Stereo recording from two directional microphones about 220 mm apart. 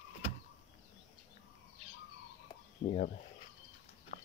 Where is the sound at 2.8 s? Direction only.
40° left (ahead or behind).